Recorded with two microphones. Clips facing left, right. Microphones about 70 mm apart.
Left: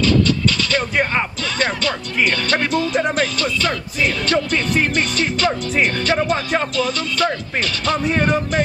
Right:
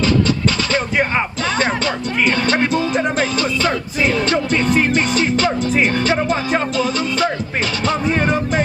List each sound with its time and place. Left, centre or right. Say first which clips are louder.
1.6 s speech: even; right
8.0 s music: left 1 dB; centre